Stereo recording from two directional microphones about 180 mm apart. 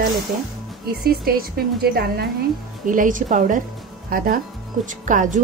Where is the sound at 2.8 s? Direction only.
45° right (ahead or behind).